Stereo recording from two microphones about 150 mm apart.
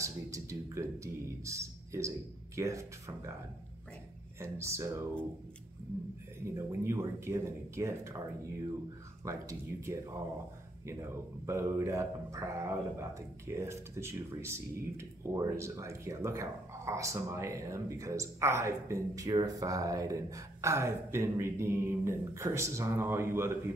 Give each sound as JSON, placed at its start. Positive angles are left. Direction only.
{"t": 0.0, "sound": "music", "side_deg": -20}
{"t": 4.4, "sound": "speech", "side_deg": -20}
{"t": 6.5, "sound": "speech", "side_deg": -15}
{"t": 9.2, "sound": "speech", "side_deg": -20}